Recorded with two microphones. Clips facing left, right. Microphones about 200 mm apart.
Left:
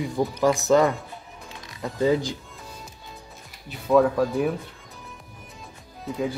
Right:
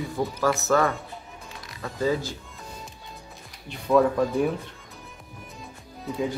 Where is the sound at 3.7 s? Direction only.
Centre (ahead or behind).